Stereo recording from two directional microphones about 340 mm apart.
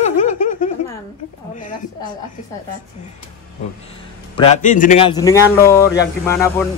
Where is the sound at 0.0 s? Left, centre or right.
Left.